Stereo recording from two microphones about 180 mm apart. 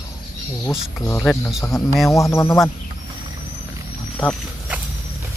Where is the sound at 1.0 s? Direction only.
10° left (ahead or behind).